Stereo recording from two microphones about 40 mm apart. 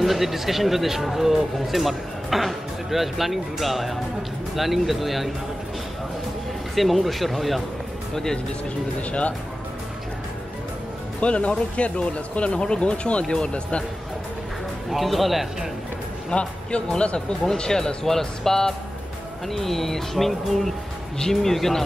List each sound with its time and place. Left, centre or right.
0.0 s speech: centre
6.7 s speech: centre
8.1 s speech: centre
11.1 s speech: left
14.9 s speech: centre
16.3 s speech: left
17.6 s speech: centre